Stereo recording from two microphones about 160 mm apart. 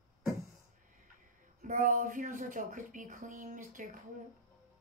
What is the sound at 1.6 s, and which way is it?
Speech, 55° right (ahead or behind).